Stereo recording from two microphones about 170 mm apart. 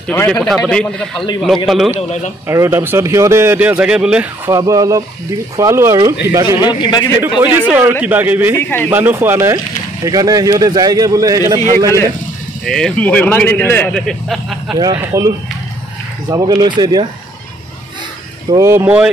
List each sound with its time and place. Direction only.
0.1 s a man's voice: 10° left (ahead or behind)
2.0 s speech: 40° left (ahead or behind)
2.4 s speech: 15° right (ahead or behind)
4.5 s speech: 20° right (ahead or behind)
6.4 s a man's voice: 25° left (ahead or behind)
7.2 s speech: 10° right (ahead or behind)
8.5 s speech: 10° left (ahead or behind)
8.9 s speech: 10° right (ahead or behind)
12.6 s speech: 5° left (ahead or behind)
14.8 s speech: 20° right (ahead or behind)
18.5 s speech: 15° right (ahead or behind)